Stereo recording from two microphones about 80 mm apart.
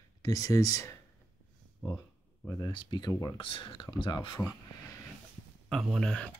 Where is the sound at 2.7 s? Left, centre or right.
Left.